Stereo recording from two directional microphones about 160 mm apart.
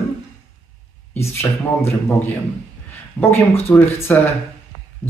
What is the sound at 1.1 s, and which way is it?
Speech, 15° left (ahead or behind).